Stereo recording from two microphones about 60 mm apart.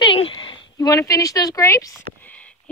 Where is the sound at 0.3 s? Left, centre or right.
Left.